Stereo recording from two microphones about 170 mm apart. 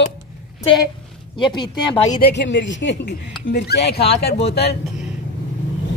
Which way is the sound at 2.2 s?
90° left.